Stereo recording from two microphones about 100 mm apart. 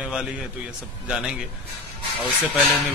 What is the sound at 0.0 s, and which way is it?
A man's voice, 10° right (ahead or behind).